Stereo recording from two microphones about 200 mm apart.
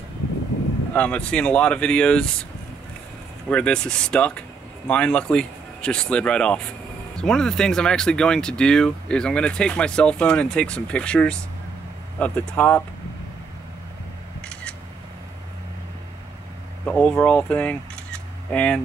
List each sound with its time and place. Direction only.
0.9 s speech: 5° left (ahead or behind)
3.4 s speech: 5° left (ahead or behind)
14.4 s a sound: 5° left (ahead or behind)
16.8 s speech: 5° left (ahead or behind)